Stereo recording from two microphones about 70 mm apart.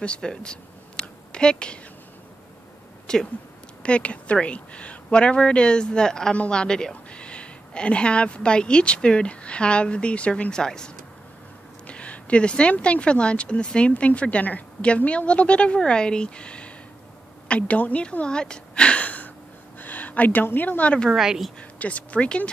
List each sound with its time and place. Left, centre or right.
0.0 s a sound: centre
3.1 s speech: centre
11.9 s speech: centre
21.1 s speech: centre
21.5 s speech: centre